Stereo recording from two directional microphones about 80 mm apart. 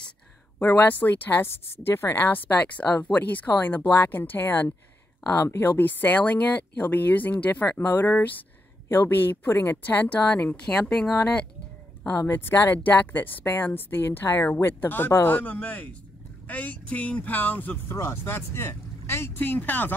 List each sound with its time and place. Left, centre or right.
0.6 s speech: left
5.2 s speech: left
5.6 s speech: left
12.3 s speech: left